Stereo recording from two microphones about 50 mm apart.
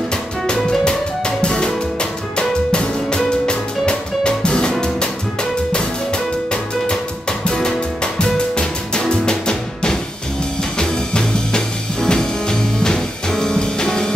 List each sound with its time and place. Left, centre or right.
0.6 s music: centre